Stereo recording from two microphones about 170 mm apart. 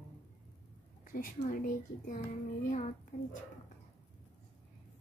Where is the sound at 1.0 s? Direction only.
55° left (ahead or behind).